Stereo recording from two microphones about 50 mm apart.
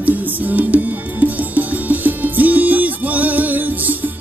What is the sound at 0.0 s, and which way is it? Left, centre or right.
Music, right.